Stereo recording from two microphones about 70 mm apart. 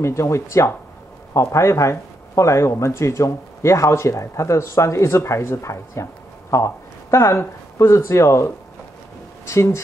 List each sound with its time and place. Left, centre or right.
0.0 s speech: left